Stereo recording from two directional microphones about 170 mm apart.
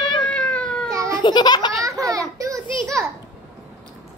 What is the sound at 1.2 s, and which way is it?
Speech, 25° left (ahead or behind).